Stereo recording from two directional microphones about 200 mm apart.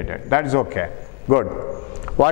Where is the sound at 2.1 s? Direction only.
20° left (ahead or behind).